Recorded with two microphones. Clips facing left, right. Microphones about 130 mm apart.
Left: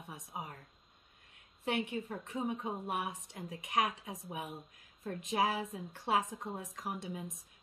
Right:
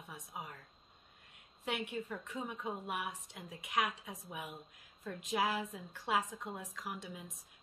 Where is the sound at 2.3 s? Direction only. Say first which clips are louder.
Left 6 dB; 35° left (ahead or behind).